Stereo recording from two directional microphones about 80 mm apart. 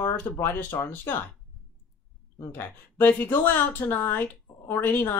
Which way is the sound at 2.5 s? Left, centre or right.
Left.